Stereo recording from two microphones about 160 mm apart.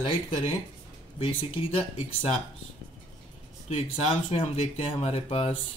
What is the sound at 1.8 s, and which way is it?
Speech, 35° left (ahead or behind).